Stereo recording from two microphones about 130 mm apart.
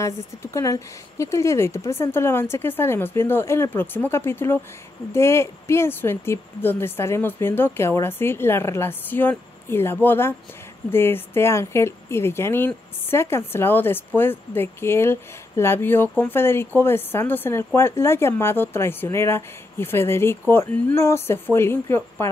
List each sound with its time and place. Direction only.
0.0 s speech: 25° left (ahead or behind)